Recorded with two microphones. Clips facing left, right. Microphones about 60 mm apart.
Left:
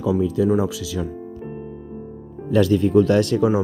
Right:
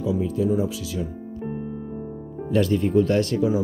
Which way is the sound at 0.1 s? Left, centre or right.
Left.